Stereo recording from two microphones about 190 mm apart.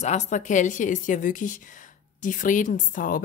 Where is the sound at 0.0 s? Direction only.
35° left (ahead or behind).